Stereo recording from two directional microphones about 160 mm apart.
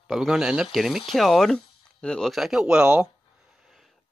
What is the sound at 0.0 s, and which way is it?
Speech, 5° right (ahead or behind).